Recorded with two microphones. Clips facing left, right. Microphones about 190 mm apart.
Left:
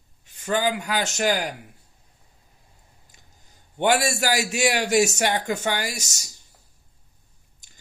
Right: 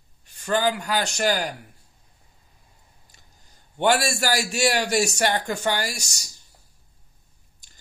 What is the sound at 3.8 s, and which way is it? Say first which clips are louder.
A man's voice: even; 15° left (ahead or behind).